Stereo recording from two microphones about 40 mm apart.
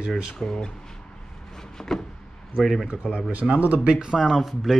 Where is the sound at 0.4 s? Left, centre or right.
Centre.